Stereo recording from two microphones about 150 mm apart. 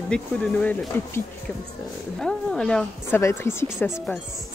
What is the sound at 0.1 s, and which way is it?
Speech, 10° left (ahead or behind).